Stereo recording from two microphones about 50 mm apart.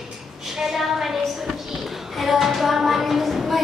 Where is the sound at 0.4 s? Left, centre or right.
Centre.